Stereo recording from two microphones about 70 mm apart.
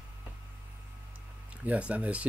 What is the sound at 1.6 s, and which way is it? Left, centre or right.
Speech, centre.